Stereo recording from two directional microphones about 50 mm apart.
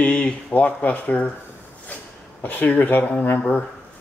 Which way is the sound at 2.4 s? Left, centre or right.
Left.